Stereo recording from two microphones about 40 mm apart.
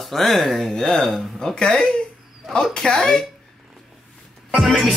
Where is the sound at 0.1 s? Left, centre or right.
Centre.